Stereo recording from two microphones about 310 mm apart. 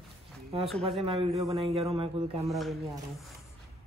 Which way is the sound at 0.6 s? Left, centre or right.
Centre.